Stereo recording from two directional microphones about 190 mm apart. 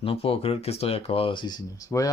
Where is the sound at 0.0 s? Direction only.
30° left (ahead or behind).